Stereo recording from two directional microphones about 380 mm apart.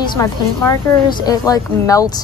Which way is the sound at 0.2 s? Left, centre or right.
Centre.